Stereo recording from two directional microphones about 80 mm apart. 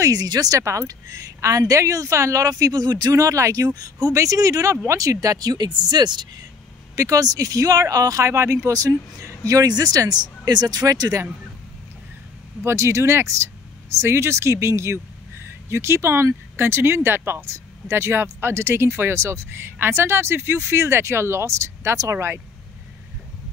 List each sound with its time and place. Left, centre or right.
0.0 s a woman's voice: right
7.0 s a woman's voice: right
12.6 s speech: right
22.1 s speech: right